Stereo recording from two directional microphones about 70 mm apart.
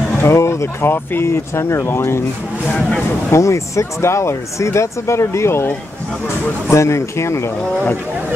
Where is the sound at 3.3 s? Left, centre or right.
Left.